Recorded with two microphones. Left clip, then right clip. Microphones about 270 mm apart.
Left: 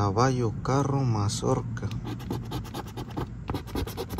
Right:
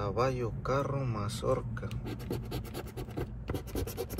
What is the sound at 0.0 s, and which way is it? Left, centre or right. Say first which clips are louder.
A man's voice: left 6 dB; left.